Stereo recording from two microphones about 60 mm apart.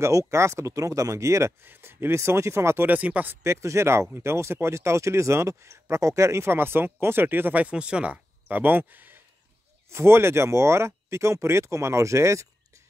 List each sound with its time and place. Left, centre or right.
0.0 s speech: right
1.6 s speech: right
2.9 s speech: right
3.4 s speech: right
7.6 s speech: centre; by 9.2 s right
9.8 s speech: right